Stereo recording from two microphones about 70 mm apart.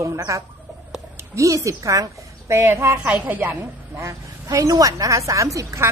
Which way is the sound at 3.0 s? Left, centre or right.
Right.